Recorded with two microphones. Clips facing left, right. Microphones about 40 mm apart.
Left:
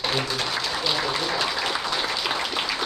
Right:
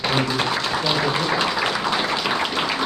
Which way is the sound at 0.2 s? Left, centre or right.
Centre.